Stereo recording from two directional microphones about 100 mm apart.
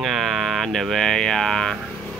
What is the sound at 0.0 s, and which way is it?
Speech, centre (ahead or behind).